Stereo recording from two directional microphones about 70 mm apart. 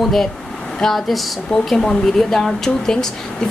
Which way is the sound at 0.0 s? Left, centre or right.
Centre.